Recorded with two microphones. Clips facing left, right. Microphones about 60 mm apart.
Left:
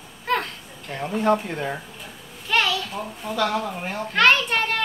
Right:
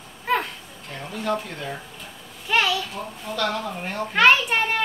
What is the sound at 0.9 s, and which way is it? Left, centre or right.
Speech, left.